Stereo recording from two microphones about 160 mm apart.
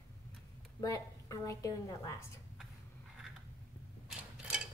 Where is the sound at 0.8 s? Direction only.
20° left (ahead or behind).